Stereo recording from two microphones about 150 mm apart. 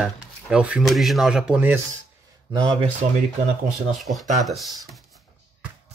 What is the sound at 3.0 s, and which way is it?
Speech, 45° right (ahead or behind).